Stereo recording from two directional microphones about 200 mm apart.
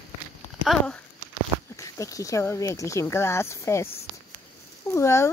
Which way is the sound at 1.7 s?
15° left (ahead or behind).